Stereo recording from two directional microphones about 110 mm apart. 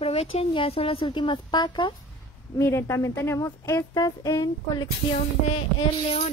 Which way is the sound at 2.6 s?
25° left (ahead or behind).